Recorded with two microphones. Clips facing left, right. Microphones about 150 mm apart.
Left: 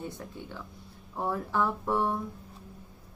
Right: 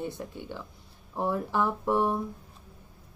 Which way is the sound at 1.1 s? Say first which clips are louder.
Right 2 dB; 15° right (ahead or behind).